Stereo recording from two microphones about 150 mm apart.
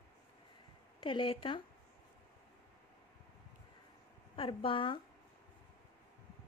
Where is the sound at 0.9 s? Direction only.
35° left (ahead or behind).